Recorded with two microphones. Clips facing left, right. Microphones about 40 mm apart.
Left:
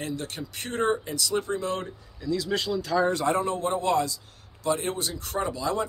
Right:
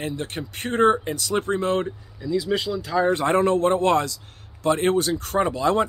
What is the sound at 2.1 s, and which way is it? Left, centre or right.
Speech, centre.